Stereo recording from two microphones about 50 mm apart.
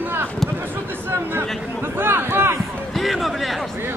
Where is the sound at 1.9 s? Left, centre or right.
Right.